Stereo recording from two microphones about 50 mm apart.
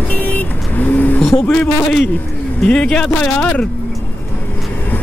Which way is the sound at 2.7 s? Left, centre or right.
Centre.